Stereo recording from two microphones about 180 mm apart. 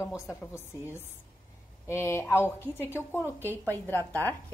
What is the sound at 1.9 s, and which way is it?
A woman's voice, 15° left (ahead or behind).